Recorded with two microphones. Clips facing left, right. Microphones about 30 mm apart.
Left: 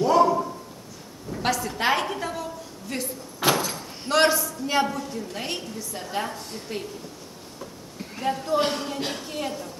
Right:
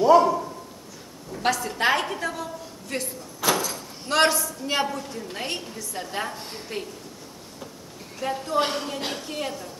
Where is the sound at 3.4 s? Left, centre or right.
Left.